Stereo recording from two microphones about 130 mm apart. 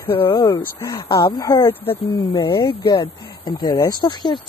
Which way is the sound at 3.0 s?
35° left (ahead or behind).